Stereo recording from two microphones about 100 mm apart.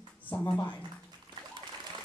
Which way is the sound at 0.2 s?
15° left (ahead or behind).